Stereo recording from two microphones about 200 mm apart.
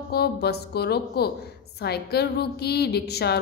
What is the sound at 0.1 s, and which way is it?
A woman's voice, 55° left (ahead or behind).